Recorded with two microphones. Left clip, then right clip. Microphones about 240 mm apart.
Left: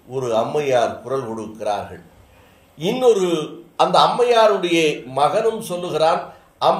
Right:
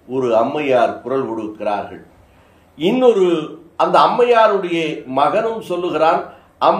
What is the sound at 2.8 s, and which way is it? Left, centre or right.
Speech, left.